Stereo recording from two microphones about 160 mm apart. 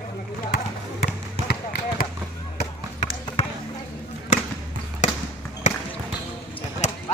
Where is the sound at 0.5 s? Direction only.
70° left (ahead or behind).